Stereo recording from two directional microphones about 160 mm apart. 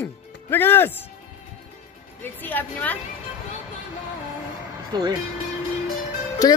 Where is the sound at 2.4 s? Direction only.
10° left (ahead or behind).